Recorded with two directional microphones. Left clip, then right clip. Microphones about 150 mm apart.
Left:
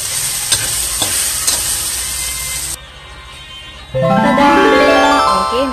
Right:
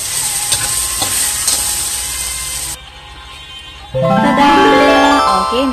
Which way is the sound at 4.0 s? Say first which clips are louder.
Even; centre (ahead or behind).